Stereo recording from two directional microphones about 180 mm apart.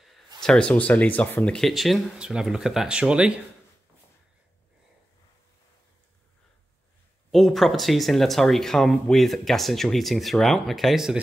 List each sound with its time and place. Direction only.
0.4 s speech: 5° left (ahead or behind)
7.2 s speech: centre (ahead or behind)